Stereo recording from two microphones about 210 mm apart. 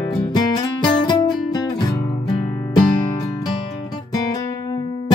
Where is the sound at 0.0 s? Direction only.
20° left (ahead or behind).